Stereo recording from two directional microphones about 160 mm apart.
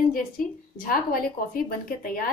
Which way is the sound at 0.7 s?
60° left (ahead or behind).